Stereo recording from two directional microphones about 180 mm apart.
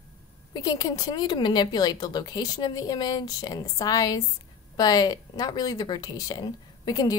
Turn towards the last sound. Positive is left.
turn(degrees=20)  # may be behind; listen again after turning